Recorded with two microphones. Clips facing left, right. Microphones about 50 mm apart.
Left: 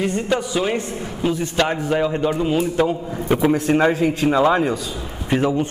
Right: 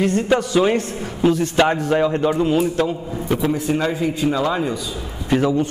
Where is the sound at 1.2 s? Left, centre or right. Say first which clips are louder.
Right 4 dB; centre.